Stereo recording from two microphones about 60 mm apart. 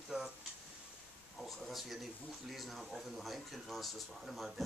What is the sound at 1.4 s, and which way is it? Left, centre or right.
Speech, centre.